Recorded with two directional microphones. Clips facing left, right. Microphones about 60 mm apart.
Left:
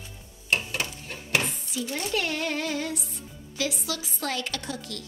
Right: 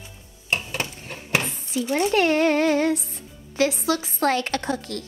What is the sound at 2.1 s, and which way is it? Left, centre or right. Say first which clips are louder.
Speech: right 10 dB; right.